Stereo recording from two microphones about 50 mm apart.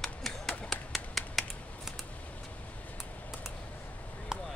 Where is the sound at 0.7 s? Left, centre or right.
Centre.